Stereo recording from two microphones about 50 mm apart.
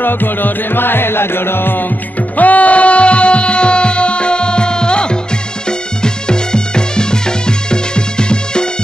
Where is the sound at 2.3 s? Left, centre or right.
Left.